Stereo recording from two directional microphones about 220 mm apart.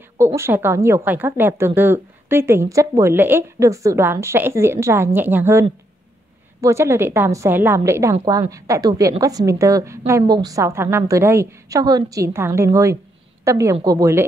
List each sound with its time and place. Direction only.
0.4 s a woman's voice: 10° right (ahead or behind)